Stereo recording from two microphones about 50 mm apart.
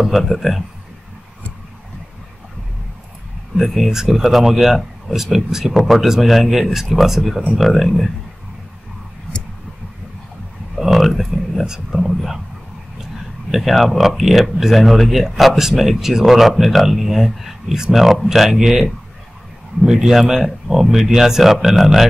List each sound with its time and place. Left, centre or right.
0.0 s speech: centre
3.6 s speech: centre
10.8 s a sound: centre
11.6 s speech: centre
13.5 s speech: centre